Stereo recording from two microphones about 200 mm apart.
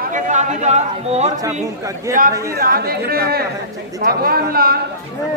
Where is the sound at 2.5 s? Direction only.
50° right (ahead or behind).